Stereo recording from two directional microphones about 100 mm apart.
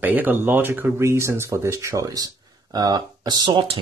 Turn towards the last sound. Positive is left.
turn(degrees=-45)  # may be behind; listen again after turning